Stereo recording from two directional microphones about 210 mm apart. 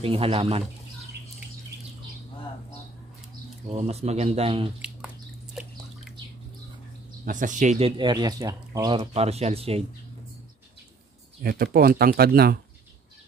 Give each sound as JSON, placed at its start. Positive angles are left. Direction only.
{"t": 0.0, "sound": "speech", "side_deg": -25}
{"t": 3.7, "sound": "speech", "side_deg": -30}
{"t": 4.8, "sound": "a sound", "side_deg": -5}
{"t": 7.2, "sound": "speech", "side_deg": -40}
{"t": 8.0, "sound": "speech", "side_deg": -20}
{"t": 11.4, "sound": "speech", "side_deg": -45}